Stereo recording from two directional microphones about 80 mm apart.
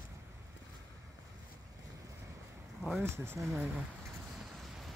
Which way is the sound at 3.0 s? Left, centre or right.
Right.